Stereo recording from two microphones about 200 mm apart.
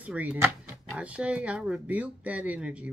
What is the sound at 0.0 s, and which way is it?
Speech, 5° right (ahead or behind).